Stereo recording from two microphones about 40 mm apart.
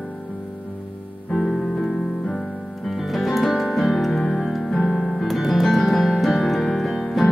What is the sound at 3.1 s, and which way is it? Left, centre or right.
Music, centre.